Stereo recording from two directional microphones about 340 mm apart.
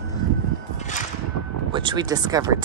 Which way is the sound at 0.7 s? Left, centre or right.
Left.